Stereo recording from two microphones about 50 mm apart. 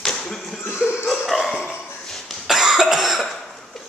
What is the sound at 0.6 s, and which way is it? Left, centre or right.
Laughter, left.